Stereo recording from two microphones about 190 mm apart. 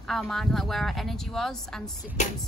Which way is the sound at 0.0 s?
Centre (ahead or behind).